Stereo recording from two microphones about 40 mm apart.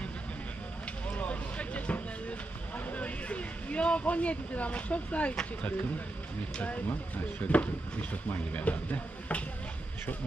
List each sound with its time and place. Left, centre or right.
1.0 s vehicle: left
2.9 s a sound: left
6.6 s speech: left